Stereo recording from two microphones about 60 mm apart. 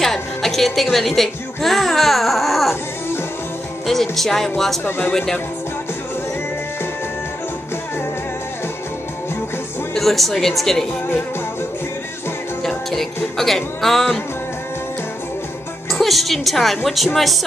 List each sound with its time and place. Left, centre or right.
0.0 s music: centre
0.9 s speech: centre
3.8 s music: centre
4.8 s speech: left
5.1 s speech: centre
9.9 s music: centre
12.6 s music: centre
15.9 s music: centre